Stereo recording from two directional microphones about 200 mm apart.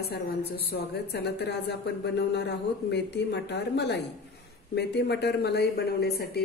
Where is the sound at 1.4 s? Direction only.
55° left (ahead or behind).